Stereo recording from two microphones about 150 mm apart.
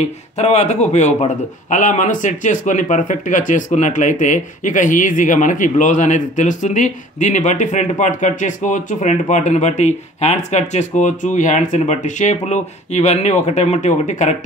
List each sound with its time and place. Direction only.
0.0 s speech: 45° left (ahead or behind)